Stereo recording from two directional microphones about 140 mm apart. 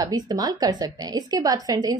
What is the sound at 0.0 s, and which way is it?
A woman's voice, 25° right (ahead or behind).